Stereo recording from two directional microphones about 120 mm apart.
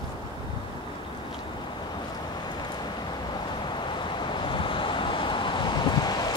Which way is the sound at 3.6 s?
40° left (ahead or behind).